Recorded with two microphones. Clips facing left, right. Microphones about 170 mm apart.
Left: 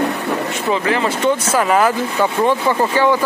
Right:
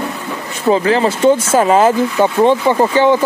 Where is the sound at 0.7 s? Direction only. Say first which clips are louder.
Right 6 dB; 30° right (ahead or behind).